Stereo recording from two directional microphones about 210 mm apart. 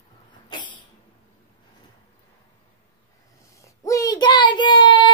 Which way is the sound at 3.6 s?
15° left (ahead or behind).